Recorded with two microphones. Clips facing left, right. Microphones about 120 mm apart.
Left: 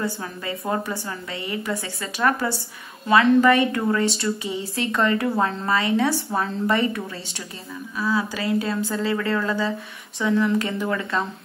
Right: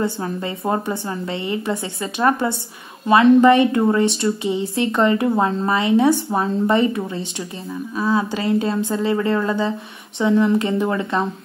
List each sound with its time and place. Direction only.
0.0 s a woman's voice: 25° right (ahead or behind)